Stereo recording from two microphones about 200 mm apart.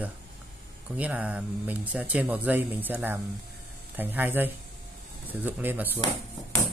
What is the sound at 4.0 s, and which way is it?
Speech, 10° right (ahead or behind).